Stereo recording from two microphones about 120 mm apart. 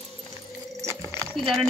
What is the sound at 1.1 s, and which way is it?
Clip-clop, 5° left (ahead or behind).